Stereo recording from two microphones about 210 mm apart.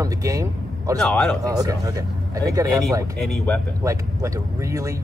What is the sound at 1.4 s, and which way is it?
Speech, 15° right (ahead or behind).